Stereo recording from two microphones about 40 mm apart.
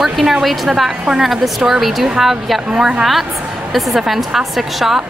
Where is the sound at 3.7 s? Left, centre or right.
Centre.